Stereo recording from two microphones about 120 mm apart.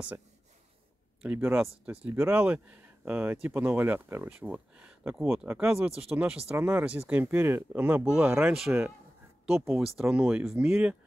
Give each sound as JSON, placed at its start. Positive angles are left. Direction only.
{"t": 1.2, "sound": "speech", "side_deg": -15}
{"t": 8.3, "sound": "speech", "side_deg": -20}
{"t": 9.9, "sound": "speech", "side_deg": -5}